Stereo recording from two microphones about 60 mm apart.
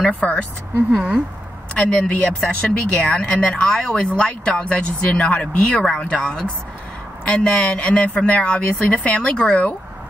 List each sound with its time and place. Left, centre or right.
0.2 s a woman's voice: left
1.9 s a woman's voice: centre